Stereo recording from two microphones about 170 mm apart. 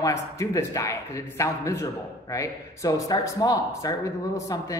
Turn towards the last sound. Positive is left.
turn(degrees=20)  # may be behind; listen again after turning